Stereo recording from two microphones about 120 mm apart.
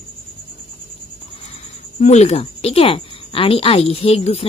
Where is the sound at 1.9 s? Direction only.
70° left (ahead or behind).